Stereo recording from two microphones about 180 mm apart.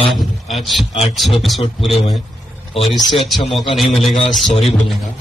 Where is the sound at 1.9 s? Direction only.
35° left (ahead or behind).